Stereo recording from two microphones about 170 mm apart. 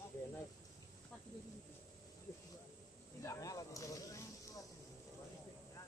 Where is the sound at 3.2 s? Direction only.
20° left (ahead or behind).